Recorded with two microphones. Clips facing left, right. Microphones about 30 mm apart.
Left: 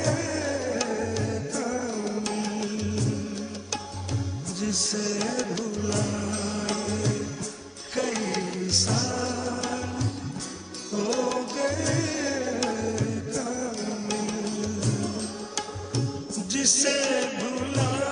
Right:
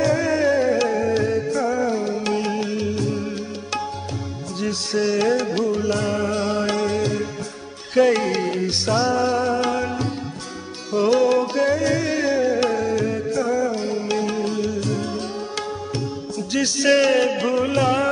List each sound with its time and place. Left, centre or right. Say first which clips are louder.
0.0 s music: right 9 dB; right
4.6 s music: right 7 dB; right
16.5 s music: right 8 dB; right